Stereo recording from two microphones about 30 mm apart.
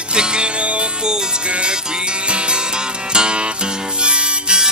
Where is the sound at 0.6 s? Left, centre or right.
Right.